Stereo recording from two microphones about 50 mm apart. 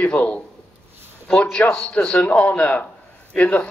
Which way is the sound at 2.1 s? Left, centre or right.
Left.